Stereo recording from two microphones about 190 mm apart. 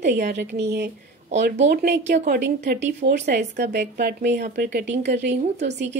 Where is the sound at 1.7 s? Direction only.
55° right (ahead or behind).